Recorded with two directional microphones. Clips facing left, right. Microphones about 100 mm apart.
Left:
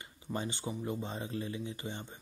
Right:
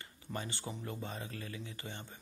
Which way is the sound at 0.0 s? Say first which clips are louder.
Left 4 dB; 20° left (ahead or behind).